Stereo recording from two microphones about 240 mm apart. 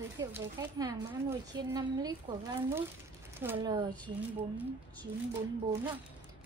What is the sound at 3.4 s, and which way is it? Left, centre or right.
Speech, centre.